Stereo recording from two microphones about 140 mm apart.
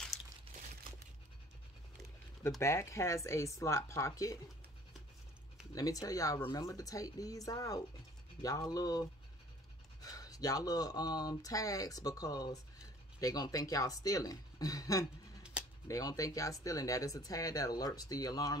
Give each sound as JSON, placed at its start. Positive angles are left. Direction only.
{"t": 0.5, "sound": "crumpling", "side_deg": -40}
{"t": 2.6, "sound": "speech", "side_deg": 20}
{"t": 5.8, "sound": "speech", "side_deg": 25}
{"t": 10.0, "sound": "speech", "side_deg": 25}